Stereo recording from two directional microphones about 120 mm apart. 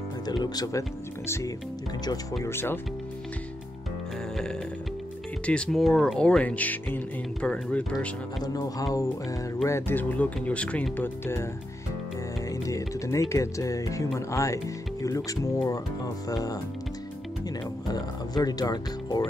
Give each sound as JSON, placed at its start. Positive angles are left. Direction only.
{"t": 0.3, "sound": "speech", "side_deg": 35}
{"t": 1.2, "sound": "speech", "side_deg": 20}
{"t": 5.5, "sound": "speech", "side_deg": 5}
{"t": 8.5, "sound": "speech", "side_deg": 30}
{"t": 12.4, "sound": "speech", "side_deg": 25}
{"t": 18.3, "sound": "speech", "side_deg": 35}